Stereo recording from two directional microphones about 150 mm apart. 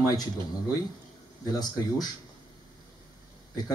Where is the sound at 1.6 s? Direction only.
25° left (ahead or behind).